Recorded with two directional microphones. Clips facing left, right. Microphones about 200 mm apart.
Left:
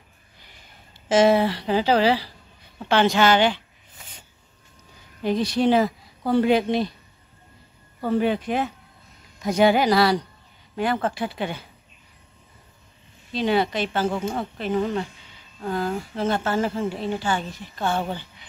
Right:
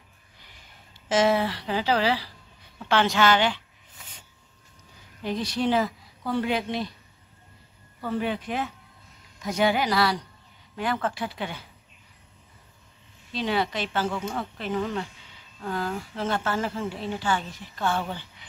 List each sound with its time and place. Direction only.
1.0 s a woman's voice: 30° left (ahead or behind)
5.2 s a woman's voice: 25° left (ahead or behind)
8.0 s a woman's voice: 30° left (ahead or behind)
13.3 s a woman's voice: 25° left (ahead or behind)